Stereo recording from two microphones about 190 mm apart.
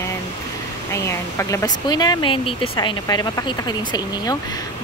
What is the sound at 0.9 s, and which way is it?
Speech, 15° left (ahead or behind).